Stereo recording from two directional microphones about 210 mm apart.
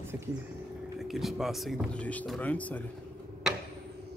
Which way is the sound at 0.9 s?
Centre (ahead or behind).